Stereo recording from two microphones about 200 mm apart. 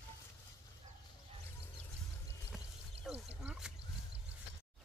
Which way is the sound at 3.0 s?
5° right (ahead or behind).